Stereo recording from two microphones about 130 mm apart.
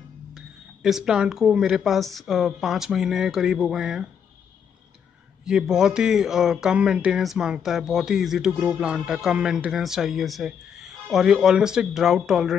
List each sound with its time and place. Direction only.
0.8 s speech: 5° right (ahead or behind)
5.4 s speech: 5° right (ahead or behind)